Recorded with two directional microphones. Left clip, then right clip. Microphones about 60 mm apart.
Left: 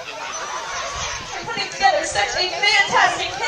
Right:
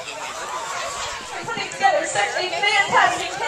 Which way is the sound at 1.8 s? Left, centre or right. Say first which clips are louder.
Left 1 dB; left.